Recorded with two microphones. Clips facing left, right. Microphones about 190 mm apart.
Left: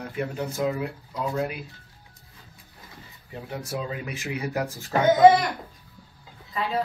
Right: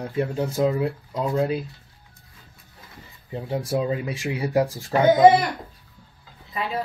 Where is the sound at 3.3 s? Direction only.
25° right (ahead or behind).